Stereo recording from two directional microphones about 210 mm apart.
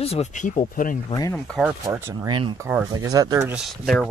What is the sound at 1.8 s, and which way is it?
Speech, 15° right (ahead or behind).